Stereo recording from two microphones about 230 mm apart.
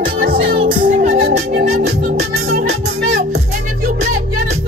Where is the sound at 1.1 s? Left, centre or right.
Right.